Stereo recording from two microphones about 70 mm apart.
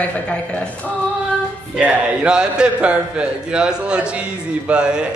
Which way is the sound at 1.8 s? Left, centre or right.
Centre.